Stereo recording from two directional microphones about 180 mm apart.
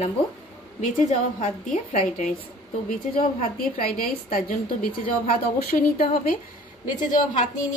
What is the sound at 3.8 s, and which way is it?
A woman's voice, 55° left (ahead or behind).